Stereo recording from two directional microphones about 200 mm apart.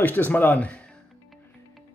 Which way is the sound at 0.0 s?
10° left (ahead or behind).